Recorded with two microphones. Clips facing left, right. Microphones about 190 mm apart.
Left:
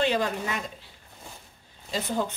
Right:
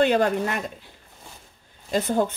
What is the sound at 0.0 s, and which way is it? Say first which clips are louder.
Speech: right 6 dB; 55° right (ahead or behind).